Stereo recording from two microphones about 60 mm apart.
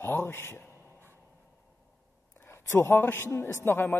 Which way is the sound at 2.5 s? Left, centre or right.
Left.